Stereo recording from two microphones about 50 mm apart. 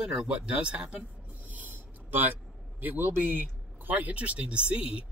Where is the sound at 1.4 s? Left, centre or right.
Right.